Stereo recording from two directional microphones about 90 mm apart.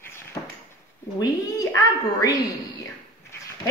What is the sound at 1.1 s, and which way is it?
Speech, 40° left (ahead or behind).